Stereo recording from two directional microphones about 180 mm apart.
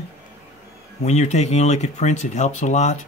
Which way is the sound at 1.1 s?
40° left (ahead or behind).